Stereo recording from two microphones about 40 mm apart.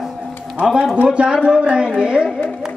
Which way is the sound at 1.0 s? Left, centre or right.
Right.